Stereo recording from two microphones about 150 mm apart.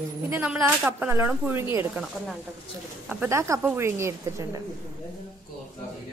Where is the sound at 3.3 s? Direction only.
20° right (ahead or behind).